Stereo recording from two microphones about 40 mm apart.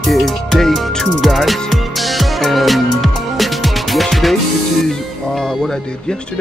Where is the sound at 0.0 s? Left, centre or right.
Centre.